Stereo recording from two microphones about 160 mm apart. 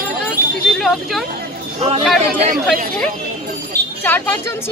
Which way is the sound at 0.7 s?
Centre (ahead or behind).